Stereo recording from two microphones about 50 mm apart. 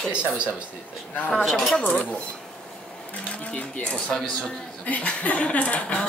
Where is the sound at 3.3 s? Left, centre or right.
Left.